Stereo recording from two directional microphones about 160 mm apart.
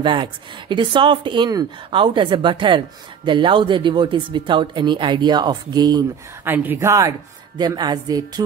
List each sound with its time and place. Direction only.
0.0 s speech: 30° right (ahead or behind)
6.4 s speech: 10° right (ahead or behind)